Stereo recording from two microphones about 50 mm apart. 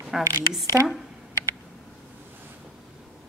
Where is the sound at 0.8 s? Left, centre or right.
Right.